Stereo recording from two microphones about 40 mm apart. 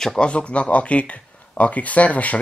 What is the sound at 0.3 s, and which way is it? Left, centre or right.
Speech, left.